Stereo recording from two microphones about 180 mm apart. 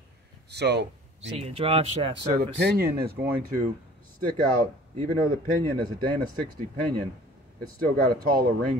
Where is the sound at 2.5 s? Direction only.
60° right (ahead or behind).